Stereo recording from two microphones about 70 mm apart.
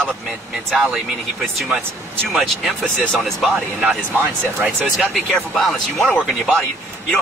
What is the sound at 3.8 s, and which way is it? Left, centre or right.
Speech, centre.